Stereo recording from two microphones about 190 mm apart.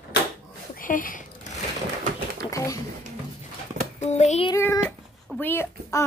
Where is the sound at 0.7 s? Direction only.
45° left (ahead or behind).